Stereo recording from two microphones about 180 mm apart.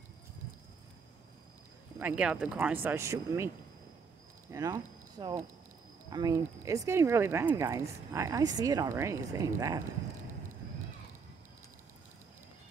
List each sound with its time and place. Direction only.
2.0 s speech: 10° right (ahead or behind)